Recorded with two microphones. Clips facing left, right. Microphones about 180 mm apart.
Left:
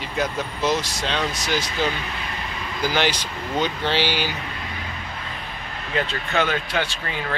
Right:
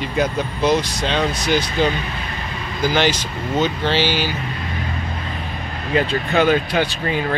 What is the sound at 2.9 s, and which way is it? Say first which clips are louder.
Speech: right 4 dB; 10° left (ahead or behind).